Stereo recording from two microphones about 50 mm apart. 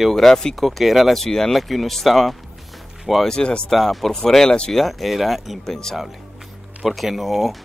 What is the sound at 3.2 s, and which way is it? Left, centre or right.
Speech, centre.